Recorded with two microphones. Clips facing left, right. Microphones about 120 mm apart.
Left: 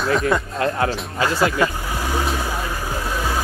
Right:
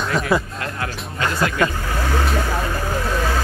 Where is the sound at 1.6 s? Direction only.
15° left (ahead or behind).